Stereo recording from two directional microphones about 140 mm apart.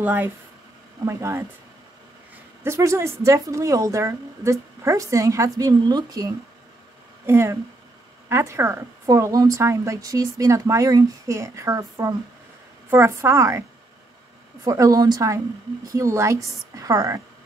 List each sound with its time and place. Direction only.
0.0 s a woman's voice: 15° right (ahead or behind)
2.6 s a woman's voice: 20° right (ahead or behind)